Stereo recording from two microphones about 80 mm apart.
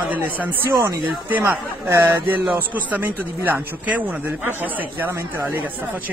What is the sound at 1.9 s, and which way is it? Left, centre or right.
A man's voice, right.